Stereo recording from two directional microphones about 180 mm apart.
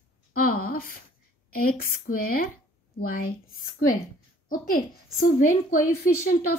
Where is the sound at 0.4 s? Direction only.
50° left (ahead or behind).